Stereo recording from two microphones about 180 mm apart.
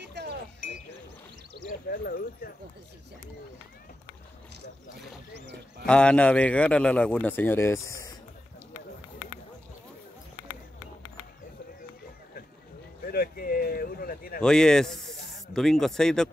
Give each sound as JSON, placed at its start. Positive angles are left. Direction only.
{"t": 0.0, "sound": "wind chime", "side_deg": -70}
{"t": 1.9, "sound": "speech", "side_deg": 55}
{"t": 5.9, "sound": "a man's voice", "side_deg": 5}
{"t": 13.0, "sound": "a sound", "side_deg": 55}
{"t": 14.4, "sound": "speech", "side_deg": 5}